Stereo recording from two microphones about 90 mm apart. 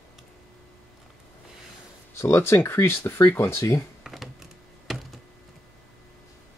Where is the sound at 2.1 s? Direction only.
30° left (ahead or behind).